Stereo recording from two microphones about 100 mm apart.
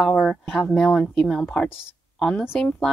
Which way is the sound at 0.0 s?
5° left (ahead or behind).